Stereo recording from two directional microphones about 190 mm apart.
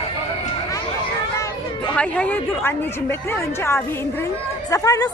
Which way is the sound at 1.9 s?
5° left (ahead or behind).